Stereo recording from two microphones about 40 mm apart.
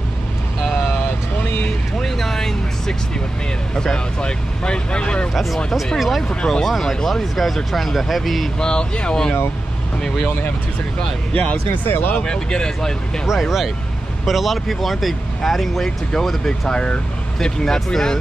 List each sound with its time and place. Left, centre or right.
2.0 s vehicle: centre
3.7 s speech: centre
5.3 s speech: centre
6.2 s speech: left
6.7 s speech: centre
8.5 s speech: left
11.9 s speech: left
12.2 s speech: centre
13.3 s speech: centre
16.6 s speech: centre